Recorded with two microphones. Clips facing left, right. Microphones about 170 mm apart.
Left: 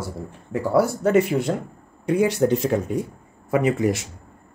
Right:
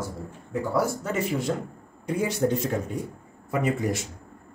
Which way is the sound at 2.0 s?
75° left (ahead or behind).